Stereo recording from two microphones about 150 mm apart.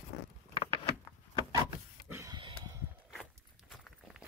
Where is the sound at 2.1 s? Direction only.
25° right (ahead or behind).